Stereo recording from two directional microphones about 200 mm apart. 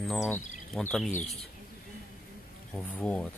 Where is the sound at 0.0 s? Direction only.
Centre (ahead or behind).